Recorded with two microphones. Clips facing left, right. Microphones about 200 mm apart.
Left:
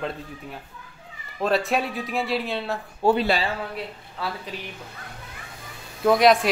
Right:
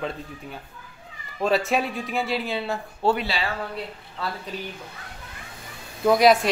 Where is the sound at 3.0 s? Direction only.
10° left (ahead or behind).